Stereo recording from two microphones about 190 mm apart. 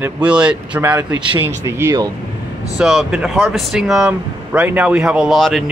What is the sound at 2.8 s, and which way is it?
Speech, centre (ahead or behind).